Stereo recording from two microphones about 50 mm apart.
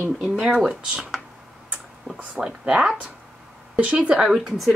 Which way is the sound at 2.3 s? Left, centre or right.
Centre.